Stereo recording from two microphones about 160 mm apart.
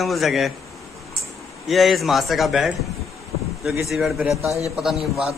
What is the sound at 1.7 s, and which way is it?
Speech, centre (ahead or behind).